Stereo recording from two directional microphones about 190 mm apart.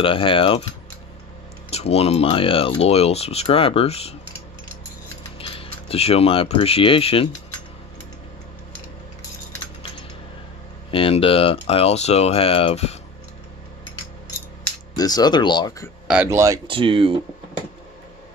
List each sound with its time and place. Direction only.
0.0 s speech: 25° left (ahead or behind)
1.7 s speech: 35° left (ahead or behind)
5.4 s speech: 30° left (ahead or behind)
10.9 s speech: 30° left (ahead or behind)
15.0 s speech: 20° left (ahead or behind)
16.1 s speech: 10° right (ahead or behind)
16.6 s speech: 25° right (ahead or behind)